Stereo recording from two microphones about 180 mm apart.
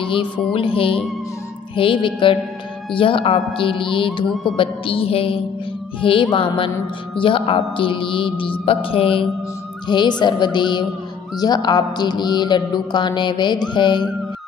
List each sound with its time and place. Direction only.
0.0 s music: 30° left (ahead or behind)
1.8 s speech: 30° left (ahead or behind)
4.6 s music: 30° left (ahead or behind)
5.9 s speech: 30° left (ahead or behind)